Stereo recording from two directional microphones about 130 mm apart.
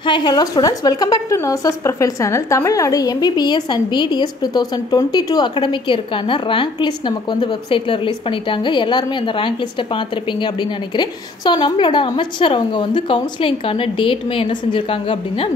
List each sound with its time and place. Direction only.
0.0 s a woman's voice: 35° left (ahead or behind)